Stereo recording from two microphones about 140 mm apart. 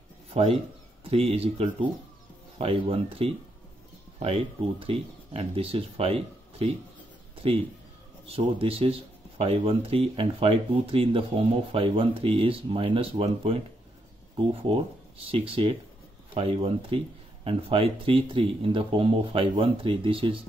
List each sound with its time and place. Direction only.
0.3 s speech: 45° right (ahead or behind)
8.3 s speech: 40° right (ahead or behind)